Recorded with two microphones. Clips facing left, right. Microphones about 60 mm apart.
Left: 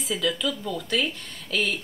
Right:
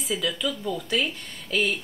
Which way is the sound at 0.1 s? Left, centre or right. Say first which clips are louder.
Left 1 dB; centre.